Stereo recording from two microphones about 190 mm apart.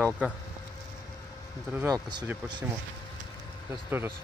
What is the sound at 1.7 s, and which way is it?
Speech, 15° right (ahead or behind).